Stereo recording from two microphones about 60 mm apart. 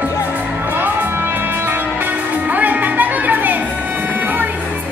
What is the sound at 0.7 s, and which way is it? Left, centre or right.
Music, right.